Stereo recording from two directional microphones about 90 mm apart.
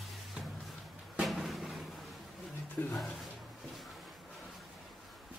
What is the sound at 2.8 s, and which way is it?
Speech, 20° left (ahead or behind).